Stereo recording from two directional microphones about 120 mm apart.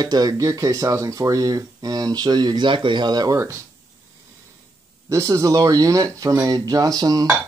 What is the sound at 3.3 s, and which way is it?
Speech, 25° right (ahead or behind).